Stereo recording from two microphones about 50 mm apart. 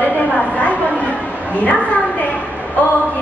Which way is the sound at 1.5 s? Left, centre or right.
Left.